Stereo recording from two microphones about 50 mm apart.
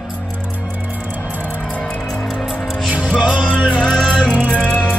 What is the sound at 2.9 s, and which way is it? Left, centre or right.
Music, centre.